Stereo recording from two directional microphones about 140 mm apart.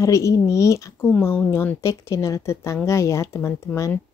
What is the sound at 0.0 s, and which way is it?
Speech, 25° left (ahead or behind).